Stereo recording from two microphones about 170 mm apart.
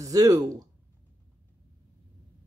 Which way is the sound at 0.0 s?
20° right (ahead or behind).